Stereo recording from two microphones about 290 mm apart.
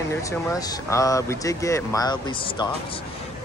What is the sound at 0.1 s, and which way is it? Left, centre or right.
Speech, centre.